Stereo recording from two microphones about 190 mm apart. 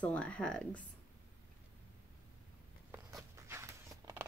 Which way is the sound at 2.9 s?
15° right (ahead or behind).